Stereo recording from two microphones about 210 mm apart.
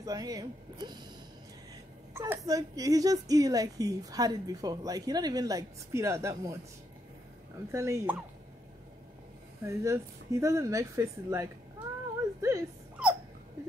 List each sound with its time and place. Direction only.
0.0 s a woman's voice: 15° right (ahead or behind)
2.1 s a woman's voice: 10° right (ahead or behind)
7.7 s a woman's voice: 15° right (ahead or behind)
9.7 s a woman's voice: 15° right (ahead or behind)
12.4 s a sound: 15° right (ahead or behind)